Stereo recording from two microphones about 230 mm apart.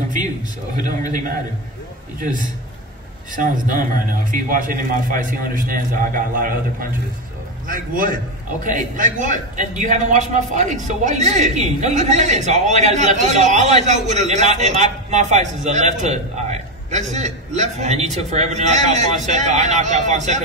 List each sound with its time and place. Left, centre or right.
3.3 s a man's voice: right